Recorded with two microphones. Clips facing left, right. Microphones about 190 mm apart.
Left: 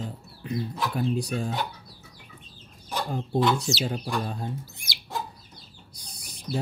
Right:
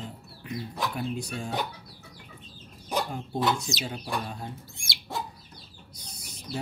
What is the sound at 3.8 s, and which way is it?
Speech, 35° left (ahead or behind).